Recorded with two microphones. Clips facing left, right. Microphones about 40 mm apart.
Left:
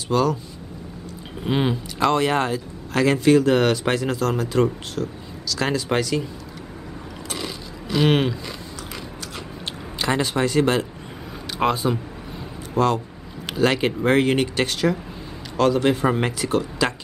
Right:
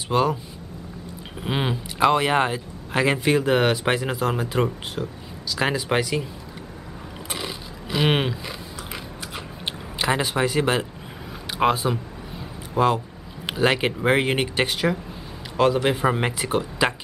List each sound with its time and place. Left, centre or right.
0.1 s speech: right
1.4 s speech: centre
7.2 s a sound: centre
9.9 s speech: centre
12.7 s speech: centre